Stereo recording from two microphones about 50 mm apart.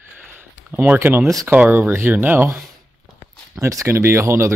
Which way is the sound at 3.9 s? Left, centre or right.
Right.